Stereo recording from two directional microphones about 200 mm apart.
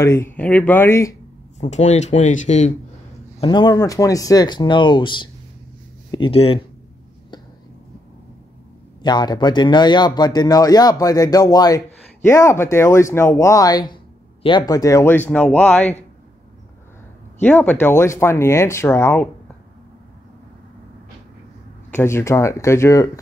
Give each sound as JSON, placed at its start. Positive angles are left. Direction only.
{"t": 0.0, "sound": "speech", "side_deg": 10}
{"t": 1.6, "sound": "speech", "side_deg": 35}
{"t": 3.3, "sound": "speech", "side_deg": 25}
{"t": 9.0, "sound": "speech", "side_deg": 20}
{"t": 17.4, "sound": "speech", "side_deg": 10}
{"t": 21.9, "sound": "speech", "side_deg": 15}